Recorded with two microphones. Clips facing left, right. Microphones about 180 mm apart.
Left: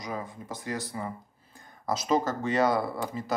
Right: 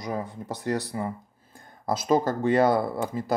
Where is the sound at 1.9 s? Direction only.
55° right (ahead or behind).